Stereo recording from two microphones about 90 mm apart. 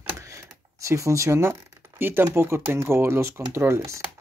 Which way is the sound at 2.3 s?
30° right (ahead or behind).